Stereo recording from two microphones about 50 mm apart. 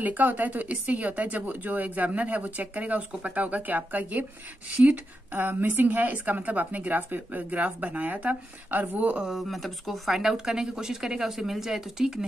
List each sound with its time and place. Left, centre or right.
0.0 s a woman's voice: right
9.3 s speech: centre